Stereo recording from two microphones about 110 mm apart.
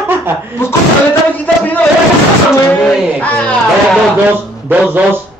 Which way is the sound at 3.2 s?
10° left (ahead or behind).